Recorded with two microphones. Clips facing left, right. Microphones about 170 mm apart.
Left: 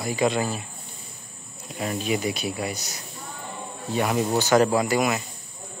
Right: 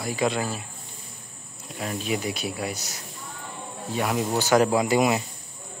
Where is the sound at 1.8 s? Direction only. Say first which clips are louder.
Left 2 dB; centre (ahead or behind).